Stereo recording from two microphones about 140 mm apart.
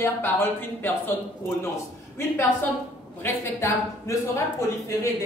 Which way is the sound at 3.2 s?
20° left (ahead or behind).